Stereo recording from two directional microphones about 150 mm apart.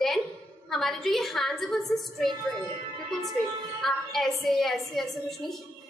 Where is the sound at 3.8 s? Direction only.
Centre (ahead or behind).